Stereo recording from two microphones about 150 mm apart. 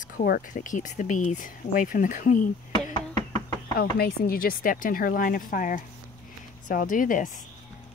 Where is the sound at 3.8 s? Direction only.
85° left; by 7.4 s 60° left (ahead or behind).